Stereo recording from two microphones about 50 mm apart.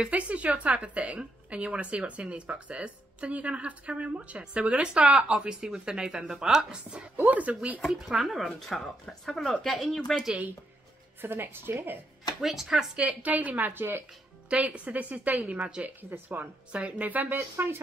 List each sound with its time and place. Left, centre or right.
0.0 s a woman's voice: right; by 6.8 s centre
7.2 s speech: right
8.2 s speech: centre
11.1 s a woman's voice: right
12.4 s speech: centre
12.9 s speech: right
14.5 s a woman's voice: right
17.6 s a woman's voice: right